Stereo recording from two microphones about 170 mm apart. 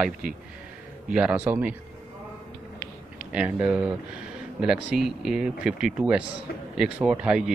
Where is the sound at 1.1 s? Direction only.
5° right (ahead or behind).